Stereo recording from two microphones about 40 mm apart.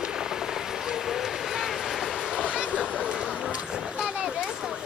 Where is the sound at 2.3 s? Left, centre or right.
Right.